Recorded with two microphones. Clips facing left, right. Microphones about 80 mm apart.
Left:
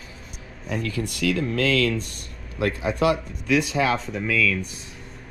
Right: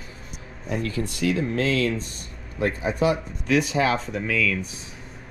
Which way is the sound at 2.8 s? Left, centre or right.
Left.